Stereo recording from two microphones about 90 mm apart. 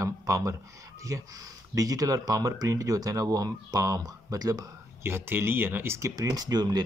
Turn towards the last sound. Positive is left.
turn(degrees=-50)  # may be behind; listen again after turning